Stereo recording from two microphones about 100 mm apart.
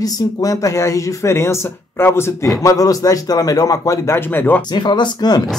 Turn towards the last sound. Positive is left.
turn(degrees=45)  # may be behind; listen again after turning